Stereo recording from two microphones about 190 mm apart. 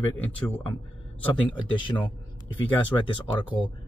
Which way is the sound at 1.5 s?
25° left (ahead or behind).